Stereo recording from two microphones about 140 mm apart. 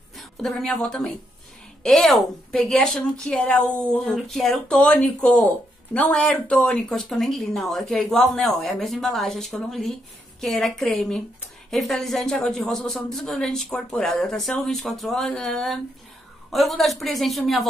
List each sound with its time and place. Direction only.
0.2 s a woman's voice: centre (ahead or behind)